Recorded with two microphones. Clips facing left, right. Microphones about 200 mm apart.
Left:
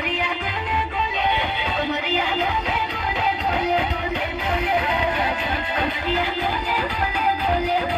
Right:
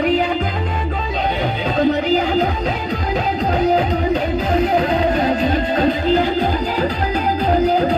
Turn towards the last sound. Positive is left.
turn(degrees=-40)  # may be behind; listen again after turning